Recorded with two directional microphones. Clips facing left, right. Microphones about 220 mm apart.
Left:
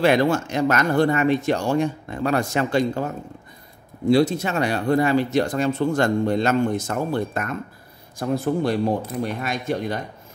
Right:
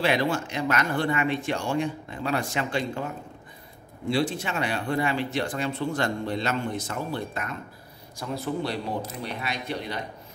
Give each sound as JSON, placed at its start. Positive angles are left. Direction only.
{"t": 0.0, "sound": "speech", "side_deg": 45}
{"t": 4.1, "sound": "speech", "side_deg": 40}